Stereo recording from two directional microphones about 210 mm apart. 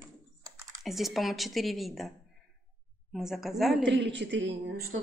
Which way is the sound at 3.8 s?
55° right (ahead or behind).